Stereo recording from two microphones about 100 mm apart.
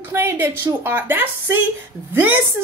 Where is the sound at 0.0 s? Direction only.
20° right (ahead or behind).